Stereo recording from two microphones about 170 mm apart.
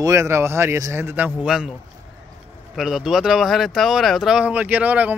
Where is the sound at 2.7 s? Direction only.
5° right (ahead or behind).